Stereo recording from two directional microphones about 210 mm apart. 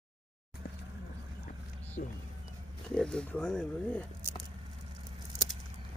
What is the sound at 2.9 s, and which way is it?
Speech, 5° left (ahead or behind).